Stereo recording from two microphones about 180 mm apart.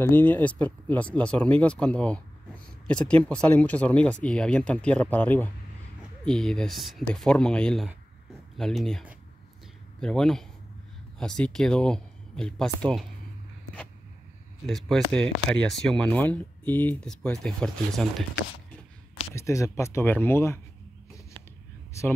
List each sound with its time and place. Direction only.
0.1 s speech: 10° left (ahead or behind)
14.7 s speech: centre (ahead or behind)
19.3 s speech: 15° left (ahead or behind)
21.4 s a sound: 30° right (ahead or behind)
21.9 s speech: 15° left (ahead or behind)